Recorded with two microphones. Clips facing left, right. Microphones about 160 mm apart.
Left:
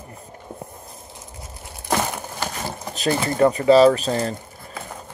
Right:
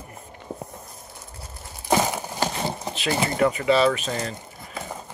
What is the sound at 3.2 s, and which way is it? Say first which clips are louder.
Speech: left 5 dB; 35° left (ahead or behind).